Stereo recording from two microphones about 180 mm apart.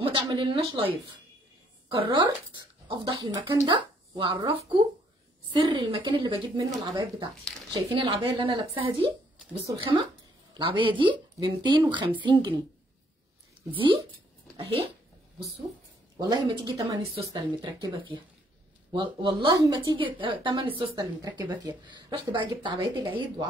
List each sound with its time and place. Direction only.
0.0 s a woman's voice: 25° right (ahead or behind)
1.9 s speech: 30° right (ahead or behind)
10.5 s speech: 25° right (ahead or behind)
13.9 s speech: 25° right (ahead or behind)
16.2 s speech: 20° right (ahead or behind)